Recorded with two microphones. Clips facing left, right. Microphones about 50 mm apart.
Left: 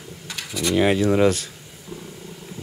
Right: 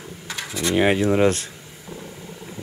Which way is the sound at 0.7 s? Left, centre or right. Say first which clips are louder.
Even; right.